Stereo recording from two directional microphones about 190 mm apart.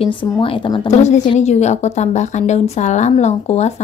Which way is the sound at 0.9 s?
35° left (ahead or behind).